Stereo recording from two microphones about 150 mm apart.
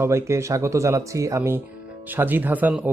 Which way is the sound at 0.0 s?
20° right (ahead or behind).